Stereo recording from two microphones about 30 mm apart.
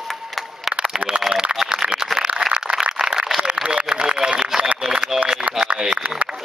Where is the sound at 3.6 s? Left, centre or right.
Right.